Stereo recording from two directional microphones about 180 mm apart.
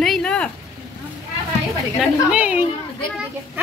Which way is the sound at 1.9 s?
5° right (ahead or behind).